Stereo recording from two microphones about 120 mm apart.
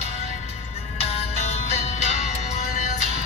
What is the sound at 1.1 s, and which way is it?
Music, 60° left (ahead or behind).